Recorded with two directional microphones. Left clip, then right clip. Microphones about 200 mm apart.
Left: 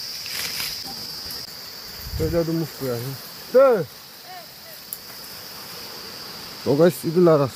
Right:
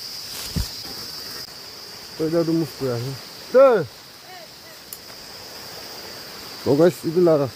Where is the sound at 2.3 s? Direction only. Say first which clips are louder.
Right 3 dB; 10° right (ahead or behind).